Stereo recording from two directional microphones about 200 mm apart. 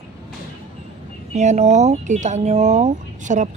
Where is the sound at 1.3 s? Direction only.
35° right (ahead or behind).